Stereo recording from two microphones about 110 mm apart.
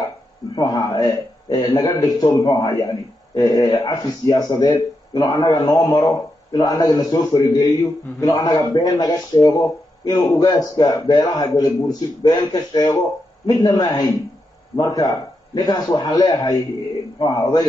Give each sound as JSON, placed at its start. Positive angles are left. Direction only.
{"t": 0.6, "sound": "a man's voice", "side_deg": 35}